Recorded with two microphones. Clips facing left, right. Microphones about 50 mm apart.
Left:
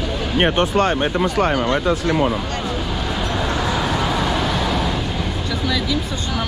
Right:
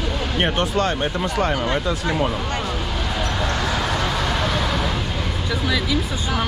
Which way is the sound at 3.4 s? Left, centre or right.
Centre.